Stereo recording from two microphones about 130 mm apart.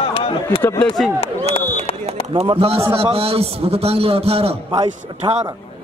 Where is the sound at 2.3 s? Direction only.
45° right (ahead or behind).